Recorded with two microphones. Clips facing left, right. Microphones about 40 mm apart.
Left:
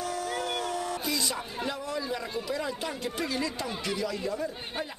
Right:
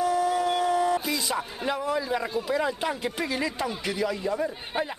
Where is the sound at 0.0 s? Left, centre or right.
Centre.